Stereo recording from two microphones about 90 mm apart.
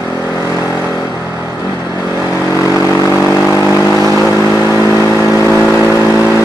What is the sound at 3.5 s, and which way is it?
Vehicle, 35° left (ahead or behind).